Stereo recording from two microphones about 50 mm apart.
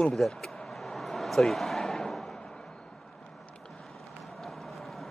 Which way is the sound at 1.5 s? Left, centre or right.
Centre.